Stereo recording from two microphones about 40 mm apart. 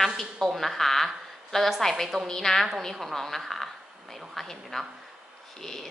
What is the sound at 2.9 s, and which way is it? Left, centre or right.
Speech, centre.